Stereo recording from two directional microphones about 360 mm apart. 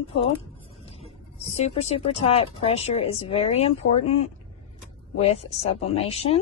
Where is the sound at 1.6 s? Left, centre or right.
Centre.